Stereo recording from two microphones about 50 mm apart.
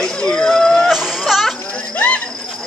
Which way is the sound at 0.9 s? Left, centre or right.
Centre.